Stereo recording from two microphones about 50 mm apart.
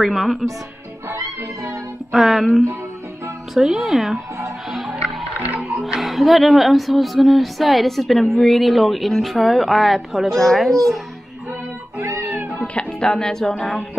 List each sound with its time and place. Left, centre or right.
0.0 s speech: centre
2.1 s speech: centre
3.5 s speech: centre
4.6 s music: centre
5.9 s speech: centre
12.0 s music: right
12.5 s speech: centre